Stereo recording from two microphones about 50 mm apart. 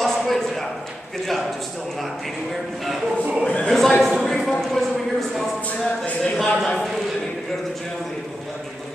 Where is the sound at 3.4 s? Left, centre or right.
Left.